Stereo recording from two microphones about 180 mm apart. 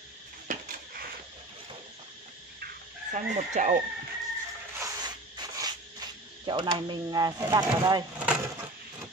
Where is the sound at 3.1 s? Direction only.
40° right (ahead or behind).